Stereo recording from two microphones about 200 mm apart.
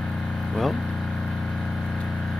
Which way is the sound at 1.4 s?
Centre (ahead or behind).